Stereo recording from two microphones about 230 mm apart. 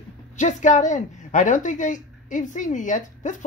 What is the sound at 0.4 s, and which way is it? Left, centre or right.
A woman's voice, left.